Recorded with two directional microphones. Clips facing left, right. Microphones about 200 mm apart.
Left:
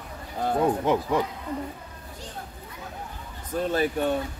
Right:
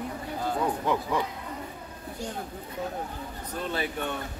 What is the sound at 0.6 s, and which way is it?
Speech, 20° left (ahead or behind).